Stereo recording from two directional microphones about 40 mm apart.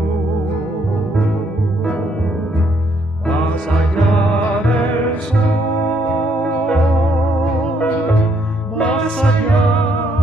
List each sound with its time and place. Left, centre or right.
5.9 s music: left
9.5 s music: left